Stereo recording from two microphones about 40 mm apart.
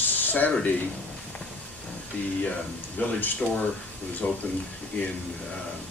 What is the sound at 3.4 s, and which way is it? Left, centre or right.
Speech, left.